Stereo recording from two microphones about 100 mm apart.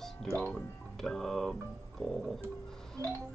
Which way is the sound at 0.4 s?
15° left (ahead or behind).